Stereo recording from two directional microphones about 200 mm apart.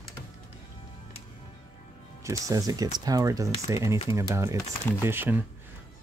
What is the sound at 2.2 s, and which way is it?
Speech, 15° right (ahead or behind).